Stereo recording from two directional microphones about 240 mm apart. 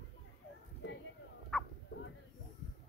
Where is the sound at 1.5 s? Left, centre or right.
Centre.